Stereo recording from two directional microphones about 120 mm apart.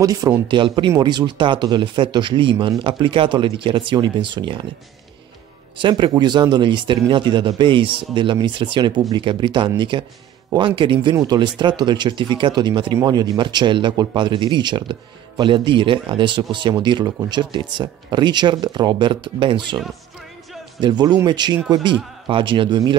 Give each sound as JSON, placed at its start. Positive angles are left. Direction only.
{"t": 0.0, "sound": "speech", "side_deg": -30}
{"t": 5.8, "sound": "speech", "side_deg": -40}
{"t": 20.8, "sound": "speech", "side_deg": -35}